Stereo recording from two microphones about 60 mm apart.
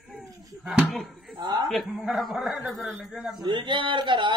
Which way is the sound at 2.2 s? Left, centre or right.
Centre.